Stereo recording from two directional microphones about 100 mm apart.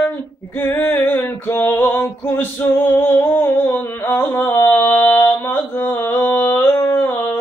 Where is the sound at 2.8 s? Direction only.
20° left (ahead or behind).